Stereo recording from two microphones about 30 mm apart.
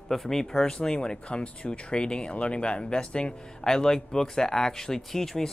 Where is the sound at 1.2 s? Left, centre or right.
Left.